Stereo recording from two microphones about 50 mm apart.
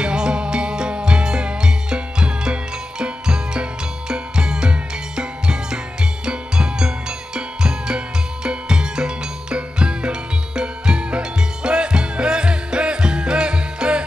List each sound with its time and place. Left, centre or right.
0.0 s music: centre